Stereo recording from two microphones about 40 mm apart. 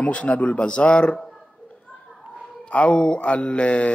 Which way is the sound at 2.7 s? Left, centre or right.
Left.